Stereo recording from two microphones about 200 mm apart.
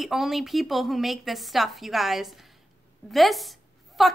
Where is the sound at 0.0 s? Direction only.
Centre (ahead or behind).